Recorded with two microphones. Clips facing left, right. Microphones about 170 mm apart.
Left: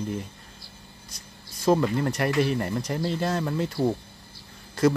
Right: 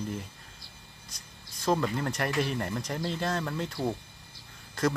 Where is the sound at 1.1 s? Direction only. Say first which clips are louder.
Left 4 dB; centre (ahead or behind).